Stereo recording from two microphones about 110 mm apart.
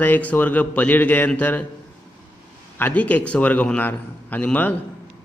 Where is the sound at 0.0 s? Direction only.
15° left (ahead or behind).